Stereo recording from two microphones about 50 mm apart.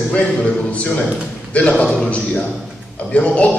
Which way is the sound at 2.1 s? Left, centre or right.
Left.